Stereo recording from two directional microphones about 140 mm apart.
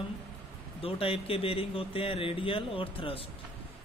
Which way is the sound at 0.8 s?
40° left (ahead or behind).